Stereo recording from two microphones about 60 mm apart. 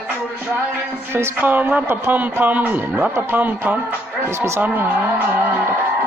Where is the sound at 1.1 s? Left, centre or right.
Right.